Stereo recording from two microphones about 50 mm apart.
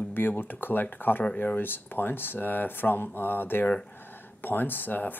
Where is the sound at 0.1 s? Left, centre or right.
Left.